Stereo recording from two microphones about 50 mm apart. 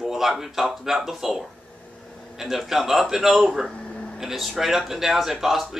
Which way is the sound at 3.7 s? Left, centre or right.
Left.